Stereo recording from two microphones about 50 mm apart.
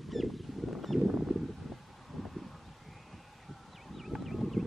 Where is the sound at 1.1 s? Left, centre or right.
Centre.